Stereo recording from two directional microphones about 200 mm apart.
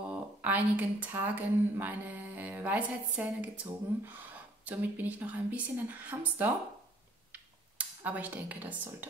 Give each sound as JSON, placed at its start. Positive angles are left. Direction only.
{"t": 0.0, "sound": "speech", "side_deg": -10}
{"t": 4.6, "sound": "a woman's voice", "side_deg": -5}
{"t": 7.3, "sound": "a sound", "side_deg": -5}